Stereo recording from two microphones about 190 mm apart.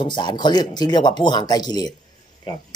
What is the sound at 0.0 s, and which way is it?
Speech, 25° left (ahead or behind).